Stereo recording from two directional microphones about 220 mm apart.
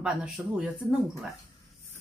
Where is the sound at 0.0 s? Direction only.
5° right (ahead or behind).